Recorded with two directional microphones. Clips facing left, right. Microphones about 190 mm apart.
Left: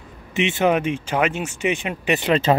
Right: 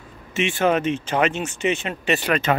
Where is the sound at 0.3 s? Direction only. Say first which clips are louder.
Left 1 dB; 20° left (ahead or behind).